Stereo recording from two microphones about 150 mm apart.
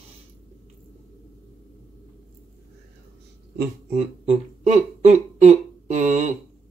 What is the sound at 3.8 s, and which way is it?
Speech, 45° right (ahead or behind).